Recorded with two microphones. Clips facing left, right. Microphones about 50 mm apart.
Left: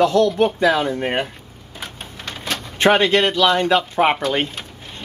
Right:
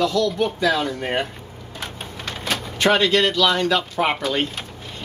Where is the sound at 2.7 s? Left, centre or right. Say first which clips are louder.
Left 3 dB; left.